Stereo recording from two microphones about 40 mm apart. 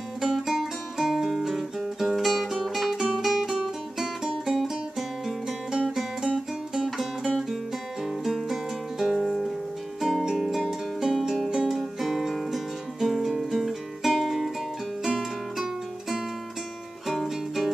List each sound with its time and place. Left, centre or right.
0.2 s music: centre
5.7 s music: centre
12.0 s music: centre